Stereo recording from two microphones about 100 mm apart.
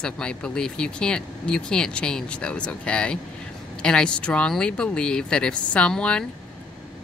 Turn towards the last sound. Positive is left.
turn(degrees=10)  # may be behind; listen again after turning